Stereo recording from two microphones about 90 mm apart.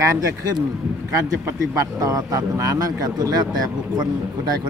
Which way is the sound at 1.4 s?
35° right (ahead or behind).